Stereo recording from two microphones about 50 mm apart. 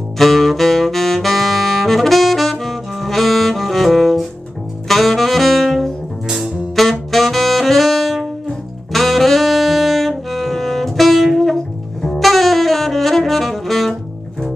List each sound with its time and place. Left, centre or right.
0.2 s saxophone: centre
6.2 s music: centre
6.7 s saxophone: centre